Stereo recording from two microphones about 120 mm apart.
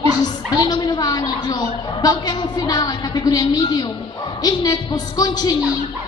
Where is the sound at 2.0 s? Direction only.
35° left (ahead or behind).